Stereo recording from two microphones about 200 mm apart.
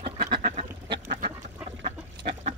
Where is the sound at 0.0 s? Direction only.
25° right (ahead or behind).